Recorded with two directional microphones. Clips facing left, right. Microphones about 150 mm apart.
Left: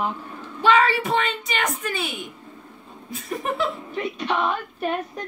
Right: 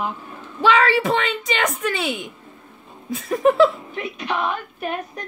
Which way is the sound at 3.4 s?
90° right.